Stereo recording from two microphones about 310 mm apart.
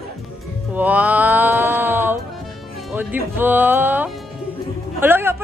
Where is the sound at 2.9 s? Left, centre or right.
Centre.